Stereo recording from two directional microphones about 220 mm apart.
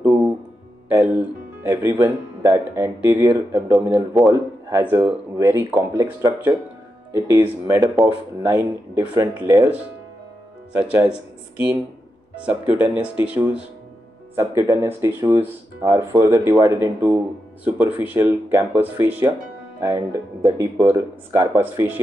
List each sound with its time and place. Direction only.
0.0 s music: 5° right (ahead or behind)
0.9 s speech: 10° right (ahead or behind)